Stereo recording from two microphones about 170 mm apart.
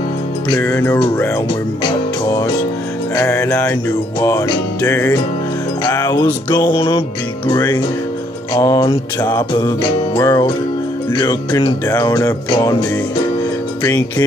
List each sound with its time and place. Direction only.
0.6 s music: 15° left (ahead or behind)
3.2 s music: 15° left (ahead or behind)
4.8 s music: 15° left (ahead or behind)
13.8 s music: 20° left (ahead or behind)